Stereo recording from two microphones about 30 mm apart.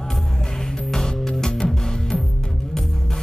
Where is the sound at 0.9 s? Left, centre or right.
Centre.